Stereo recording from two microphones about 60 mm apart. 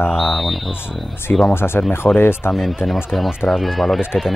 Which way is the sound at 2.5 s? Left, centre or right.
Centre.